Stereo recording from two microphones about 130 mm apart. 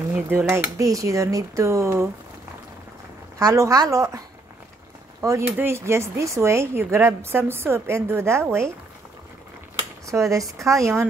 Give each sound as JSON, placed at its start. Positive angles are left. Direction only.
{"t": 0.1, "sound": "speech", "side_deg": -15}
{"t": 3.3, "sound": "speech", "side_deg": -25}
{"t": 5.2, "sound": "speech", "side_deg": -20}
{"t": 10.0, "sound": "speech", "side_deg": -25}